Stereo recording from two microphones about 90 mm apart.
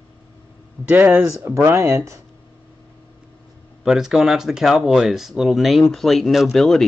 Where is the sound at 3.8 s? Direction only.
5° right (ahead or behind).